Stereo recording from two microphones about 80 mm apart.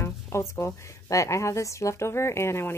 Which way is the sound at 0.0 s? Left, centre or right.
Left.